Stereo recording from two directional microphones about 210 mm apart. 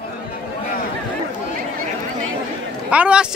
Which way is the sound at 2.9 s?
5° right (ahead or behind).